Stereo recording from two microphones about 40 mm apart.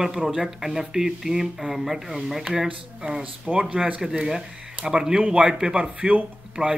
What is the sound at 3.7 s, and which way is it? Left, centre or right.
A man's voice, right.